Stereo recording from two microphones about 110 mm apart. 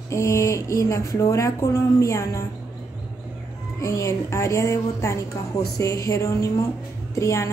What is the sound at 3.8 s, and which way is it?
Speech, 30° left (ahead or behind).